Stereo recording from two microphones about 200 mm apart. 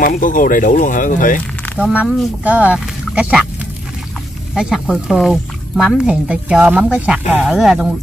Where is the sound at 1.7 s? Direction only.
5° right (ahead or behind).